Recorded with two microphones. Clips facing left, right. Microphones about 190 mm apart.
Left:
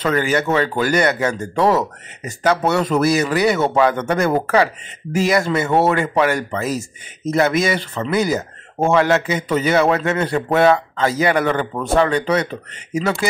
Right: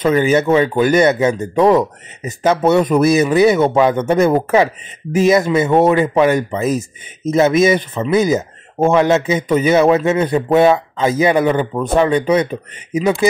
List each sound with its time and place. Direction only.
0.0 s speech: 20° right (ahead or behind)